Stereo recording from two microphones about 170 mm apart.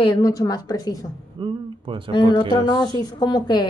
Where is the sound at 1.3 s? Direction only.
30° right (ahead or behind).